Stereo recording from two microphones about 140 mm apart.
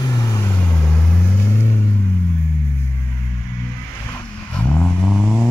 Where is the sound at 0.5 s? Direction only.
10° left (ahead or behind).